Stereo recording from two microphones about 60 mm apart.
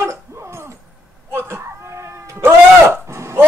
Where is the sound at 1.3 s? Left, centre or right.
Right.